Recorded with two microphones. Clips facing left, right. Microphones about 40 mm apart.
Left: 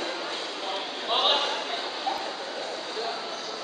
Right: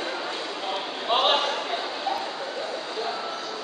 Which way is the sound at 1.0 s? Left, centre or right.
Centre.